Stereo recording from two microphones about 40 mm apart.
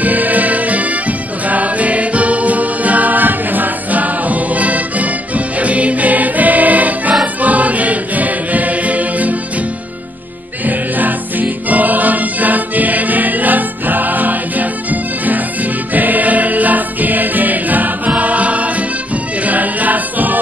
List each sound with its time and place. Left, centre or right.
0.0 s music: right
10.7 s music: right